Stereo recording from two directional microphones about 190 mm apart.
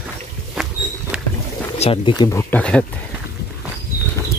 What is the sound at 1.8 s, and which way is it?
Speech, 30° left (ahead or behind).